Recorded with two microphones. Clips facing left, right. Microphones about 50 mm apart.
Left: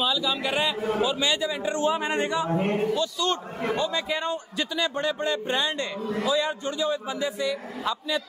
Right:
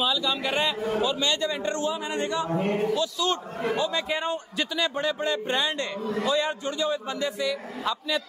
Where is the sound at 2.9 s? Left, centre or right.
Centre.